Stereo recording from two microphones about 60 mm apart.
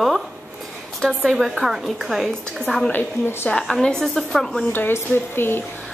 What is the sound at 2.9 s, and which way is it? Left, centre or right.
Speech, left.